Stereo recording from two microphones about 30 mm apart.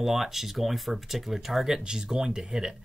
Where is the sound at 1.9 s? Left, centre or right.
Right.